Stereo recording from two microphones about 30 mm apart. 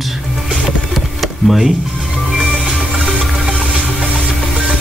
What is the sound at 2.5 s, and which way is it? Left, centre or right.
Music, right.